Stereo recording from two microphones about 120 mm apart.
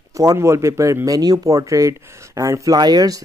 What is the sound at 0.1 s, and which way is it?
Speech, 25° right (ahead or behind).